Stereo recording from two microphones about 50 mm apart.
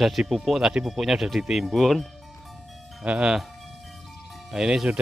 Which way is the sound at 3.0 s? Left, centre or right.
Right.